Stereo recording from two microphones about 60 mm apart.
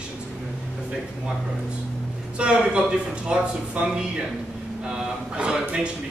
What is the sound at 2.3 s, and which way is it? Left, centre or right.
A man's voice, centre.